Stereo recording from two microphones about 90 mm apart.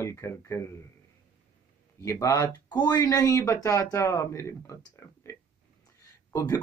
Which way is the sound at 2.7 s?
50° left (ahead or behind).